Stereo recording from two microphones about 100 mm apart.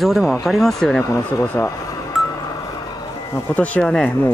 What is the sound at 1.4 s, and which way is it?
Speech, 25° left (ahead or behind).